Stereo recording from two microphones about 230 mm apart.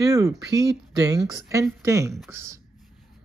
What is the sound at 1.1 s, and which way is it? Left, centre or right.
A woman's voice, centre.